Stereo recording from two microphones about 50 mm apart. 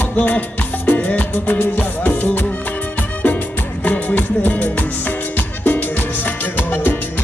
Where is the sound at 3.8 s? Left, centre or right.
Left.